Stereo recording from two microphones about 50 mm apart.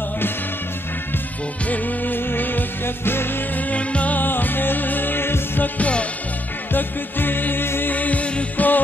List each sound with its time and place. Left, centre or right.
1.7 s music: left
5.8 s music: left
6.7 s music: left
7.9 s music: left